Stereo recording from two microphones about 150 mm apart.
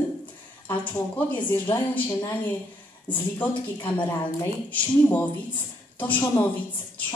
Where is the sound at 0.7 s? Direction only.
10° left (ahead or behind).